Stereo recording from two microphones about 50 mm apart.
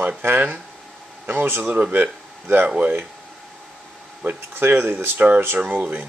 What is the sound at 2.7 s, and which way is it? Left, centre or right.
Speech, right.